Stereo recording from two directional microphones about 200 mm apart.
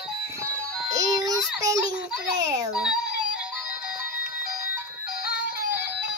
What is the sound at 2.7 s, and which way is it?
Speech, 5° right (ahead or behind).